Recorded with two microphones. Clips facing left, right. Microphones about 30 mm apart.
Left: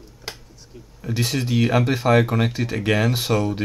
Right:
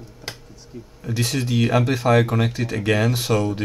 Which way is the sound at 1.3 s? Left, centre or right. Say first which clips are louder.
Even; centre.